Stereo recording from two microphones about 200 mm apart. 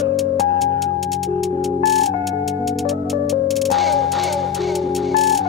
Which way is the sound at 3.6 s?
Centre (ahead or behind).